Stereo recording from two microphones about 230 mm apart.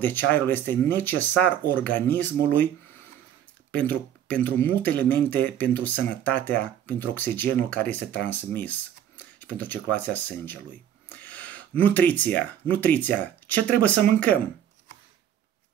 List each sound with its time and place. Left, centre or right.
0.0 s speech: centre
3.7 s speech: centre